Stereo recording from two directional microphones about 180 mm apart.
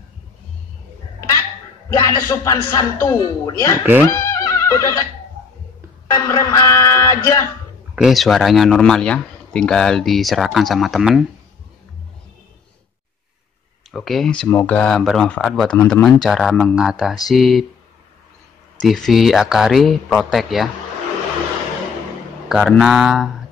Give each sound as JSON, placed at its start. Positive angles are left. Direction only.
{"t": 1.9, "sound": "a man's voice", "side_deg": 20}
{"t": 4.0, "sound": "music", "side_deg": 15}
{"t": 6.0, "sound": "music", "side_deg": 20}
{"t": 7.9, "sound": "speech", "side_deg": 0}
{"t": 13.9, "sound": "speech", "side_deg": 0}
{"t": 18.9, "sound": "speech", "side_deg": 0}
{"t": 22.5, "sound": "speech", "side_deg": 0}